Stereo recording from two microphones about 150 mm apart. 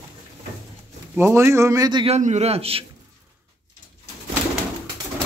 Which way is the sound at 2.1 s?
50° right (ahead or behind).